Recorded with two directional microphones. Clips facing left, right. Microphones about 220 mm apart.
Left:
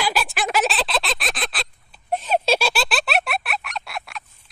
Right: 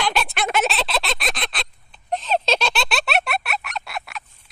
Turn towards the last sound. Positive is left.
turn(degrees=0)  # may be behind; listen again after turning